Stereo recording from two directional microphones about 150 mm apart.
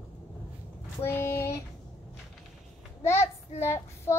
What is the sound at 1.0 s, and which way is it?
Child singing, 15° left (ahead or behind).